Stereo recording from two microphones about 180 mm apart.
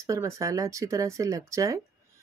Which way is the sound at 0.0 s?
15° right (ahead or behind).